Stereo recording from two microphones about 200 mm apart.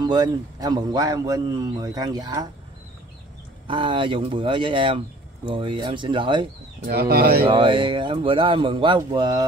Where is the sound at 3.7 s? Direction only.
25° right (ahead or behind).